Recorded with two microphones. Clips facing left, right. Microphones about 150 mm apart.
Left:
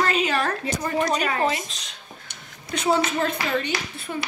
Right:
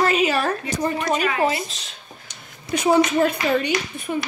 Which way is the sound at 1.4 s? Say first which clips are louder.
Right 2 dB; 5° right (ahead or behind).